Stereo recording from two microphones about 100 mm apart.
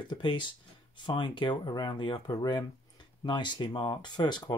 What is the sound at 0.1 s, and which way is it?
Speech, 55° left (ahead or behind).